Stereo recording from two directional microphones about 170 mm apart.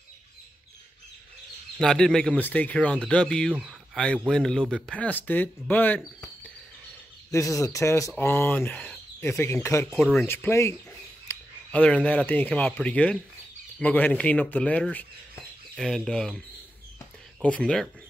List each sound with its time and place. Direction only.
1.8 s speech: 5° left (ahead or behind)
9.9 s speech: centre (ahead or behind)
10.2 s speech: 15° left (ahead or behind)